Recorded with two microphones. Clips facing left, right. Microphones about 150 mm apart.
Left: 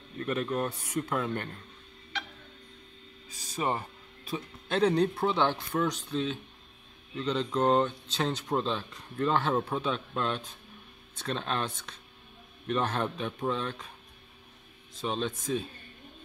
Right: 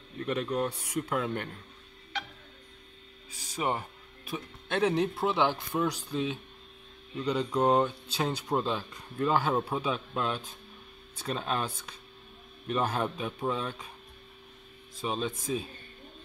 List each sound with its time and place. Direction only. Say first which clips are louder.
0.2 s speech: even; 15° right (ahead or behind)
3.5 s speech: even; 10° right (ahead or behind)
15.0 s speech: even; 5° right (ahead or behind)